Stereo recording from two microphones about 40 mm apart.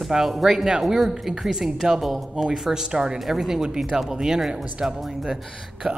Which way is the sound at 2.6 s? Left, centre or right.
Centre.